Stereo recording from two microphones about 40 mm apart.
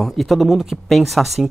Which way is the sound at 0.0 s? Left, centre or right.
Centre.